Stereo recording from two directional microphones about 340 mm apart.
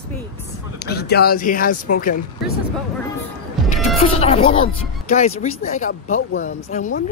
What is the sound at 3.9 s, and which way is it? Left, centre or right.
Speech, centre.